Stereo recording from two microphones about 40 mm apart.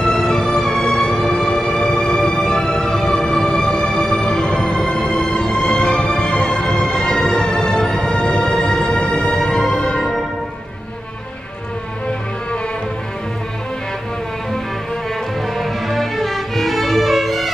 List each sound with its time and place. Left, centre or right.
0.0 s music: centre
9.6 s music: centre
15.5 s music: centre